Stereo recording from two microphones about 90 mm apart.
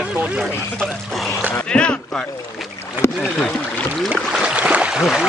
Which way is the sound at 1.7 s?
10° left (ahead or behind).